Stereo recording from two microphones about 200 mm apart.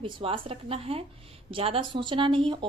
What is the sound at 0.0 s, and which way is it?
Speech, 25° right (ahead or behind).